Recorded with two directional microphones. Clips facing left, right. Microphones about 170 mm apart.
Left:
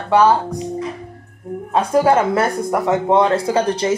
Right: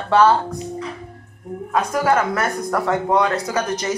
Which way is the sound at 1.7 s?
30° left (ahead or behind).